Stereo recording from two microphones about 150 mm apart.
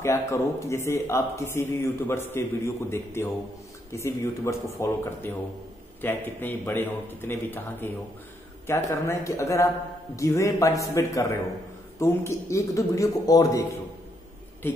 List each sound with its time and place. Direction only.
0.0 s a man's voice: 20° left (ahead or behind)